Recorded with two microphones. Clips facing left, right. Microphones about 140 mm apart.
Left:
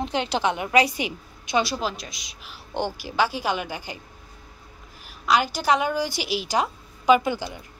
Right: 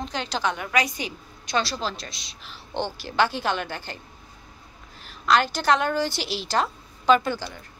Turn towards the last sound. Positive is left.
turn(degrees=15)  # may be behind; listen again after turning